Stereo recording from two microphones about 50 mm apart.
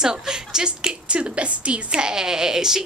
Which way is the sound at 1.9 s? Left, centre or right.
Centre.